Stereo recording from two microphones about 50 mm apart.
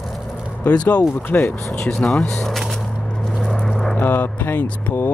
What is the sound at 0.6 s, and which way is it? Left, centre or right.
Speech, left.